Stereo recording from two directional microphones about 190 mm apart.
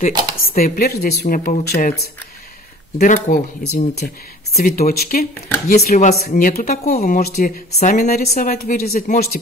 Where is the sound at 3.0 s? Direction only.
45° left (ahead or behind).